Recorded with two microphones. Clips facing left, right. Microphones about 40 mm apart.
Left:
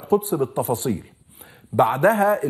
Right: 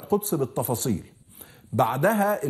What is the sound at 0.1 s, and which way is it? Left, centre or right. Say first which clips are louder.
A man's voice: left 4 dB; centre.